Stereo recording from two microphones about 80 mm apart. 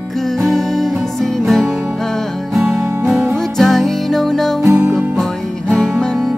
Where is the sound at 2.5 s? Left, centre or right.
Centre.